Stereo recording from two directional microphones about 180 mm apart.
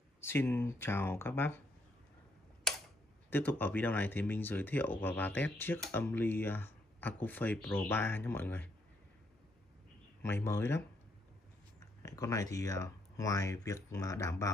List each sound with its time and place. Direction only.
0.2 s speech: 15° left (ahead or behind)
3.3 s speech: 10° left (ahead or behind)
10.2 s speech: 15° left (ahead or behind)
12.0 s speech: 20° left (ahead or behind)